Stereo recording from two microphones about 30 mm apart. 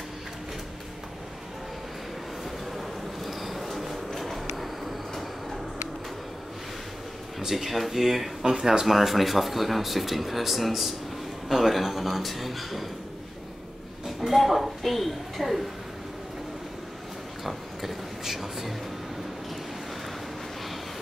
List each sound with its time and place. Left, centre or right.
3.3 s train: centre
4.2 s a sound: centre
7.3 s speech: centre
8.8 s speech: centre
14.0 s a woman's voice: centre
17.4 s a sound: centre